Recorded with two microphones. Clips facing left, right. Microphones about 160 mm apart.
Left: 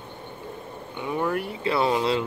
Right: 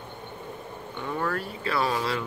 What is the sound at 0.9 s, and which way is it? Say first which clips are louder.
Speech: left 3 dB; 15° left (ahead or behind).